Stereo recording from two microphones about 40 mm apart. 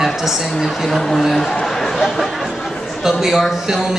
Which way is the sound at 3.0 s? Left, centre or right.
Centre.